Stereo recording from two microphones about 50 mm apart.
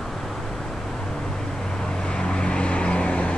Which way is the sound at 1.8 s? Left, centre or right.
Centre.